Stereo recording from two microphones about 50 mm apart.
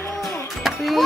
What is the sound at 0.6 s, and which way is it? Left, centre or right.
Music, centre.